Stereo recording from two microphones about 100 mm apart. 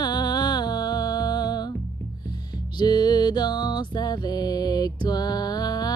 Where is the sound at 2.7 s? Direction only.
45° left (ahead or behind).